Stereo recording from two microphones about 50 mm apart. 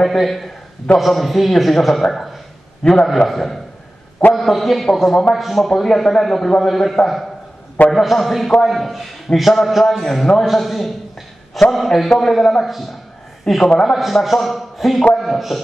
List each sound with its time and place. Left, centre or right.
0.0 s a man's voice: centre
13.8 s a man's voice: centre